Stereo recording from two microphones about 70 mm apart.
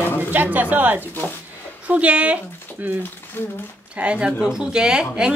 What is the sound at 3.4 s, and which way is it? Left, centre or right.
Speech, left.